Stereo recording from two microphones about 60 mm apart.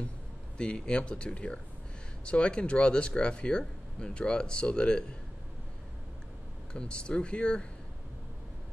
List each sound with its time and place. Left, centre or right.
0.6 s speech: centre
6.7 s speech: centre